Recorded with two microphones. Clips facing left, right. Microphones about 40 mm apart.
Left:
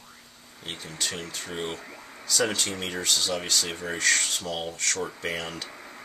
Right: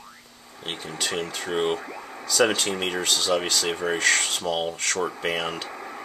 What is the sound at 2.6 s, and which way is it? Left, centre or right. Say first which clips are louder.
Speech: right 4 dB; right.